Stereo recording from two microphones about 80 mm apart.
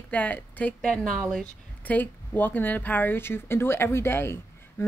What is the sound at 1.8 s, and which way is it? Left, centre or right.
Speech, left.